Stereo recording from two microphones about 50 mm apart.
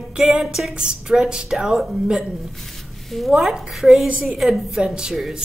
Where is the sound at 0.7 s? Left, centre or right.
Centre.